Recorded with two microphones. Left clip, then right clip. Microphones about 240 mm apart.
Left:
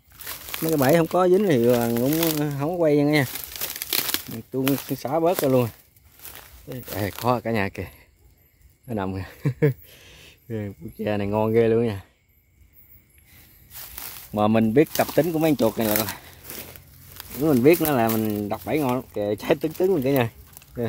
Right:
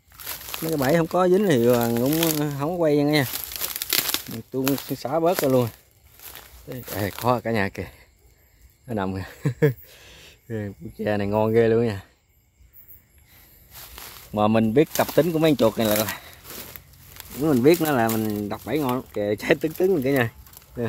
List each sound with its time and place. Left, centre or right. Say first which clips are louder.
0.2 s crumpling: even; centre
0.6 s speech: left 2 dB; centre
3.7 s speech: right 2 dB; centre
13.7 s walk: left 1 dB; centre
14.3 s speech: even; centre
17.4 s speech: left 1 dB; centre